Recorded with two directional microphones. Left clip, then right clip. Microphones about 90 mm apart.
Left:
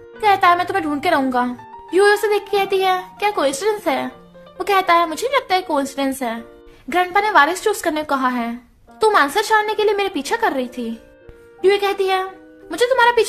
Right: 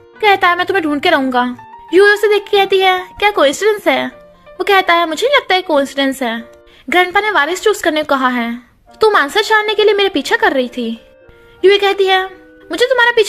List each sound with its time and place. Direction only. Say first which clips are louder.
0.2 s speech: right 3 dB; 45° right (ahead or behind)
1.9 s speech: right 5 dB; 45° right (ahead or behind)